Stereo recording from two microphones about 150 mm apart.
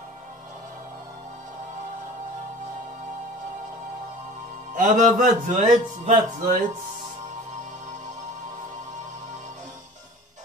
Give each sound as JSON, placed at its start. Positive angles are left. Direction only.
{"t": 4.7, "sound": "a man's voice", "side_deg": -60}